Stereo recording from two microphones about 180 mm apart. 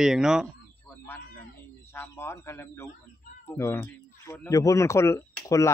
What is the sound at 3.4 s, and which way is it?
Speech, 15° left (ahead or behind).